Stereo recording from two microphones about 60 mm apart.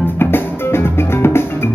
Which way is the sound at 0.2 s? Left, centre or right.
Left.